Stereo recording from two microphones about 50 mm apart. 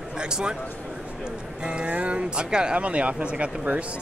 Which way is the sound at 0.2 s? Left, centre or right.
Centre.